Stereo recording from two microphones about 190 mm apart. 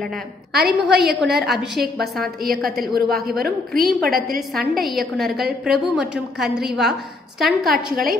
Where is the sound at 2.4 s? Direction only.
50° right (ahead or behind).